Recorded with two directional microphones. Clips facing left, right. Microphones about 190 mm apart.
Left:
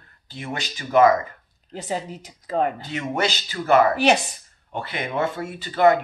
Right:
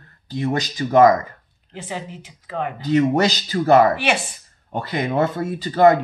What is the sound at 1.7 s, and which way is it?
A woman's voice, 40° left (ahead or behind).